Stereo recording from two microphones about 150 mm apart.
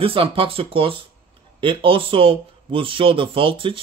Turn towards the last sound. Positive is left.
turn(degrees=-35)  # may be behind; listen again after turning